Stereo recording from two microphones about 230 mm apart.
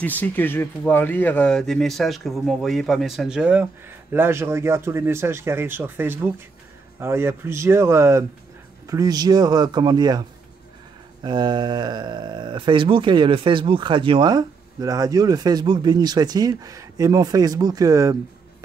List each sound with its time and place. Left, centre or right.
0.0 s speech: centre
11.2 s speech: centre